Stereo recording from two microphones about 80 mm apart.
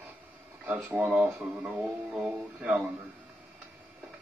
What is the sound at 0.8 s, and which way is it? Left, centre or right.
Speech, right.